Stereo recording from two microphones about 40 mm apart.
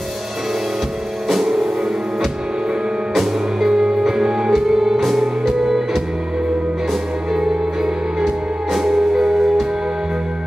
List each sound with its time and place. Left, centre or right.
1.3 s music: centre
3.2 s music: centre
8.7 s music: centre